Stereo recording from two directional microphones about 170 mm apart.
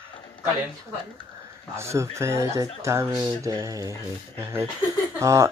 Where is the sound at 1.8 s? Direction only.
15° right (ahead or behind).